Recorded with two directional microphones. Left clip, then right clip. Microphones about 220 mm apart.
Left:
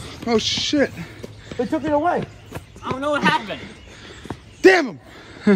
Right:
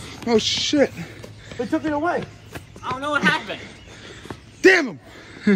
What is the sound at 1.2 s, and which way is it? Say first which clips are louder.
Speech: left 4 dB; 45° left (ahead or behind).